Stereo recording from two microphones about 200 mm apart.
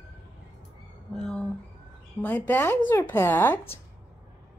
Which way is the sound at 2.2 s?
10° left (ahead or behind).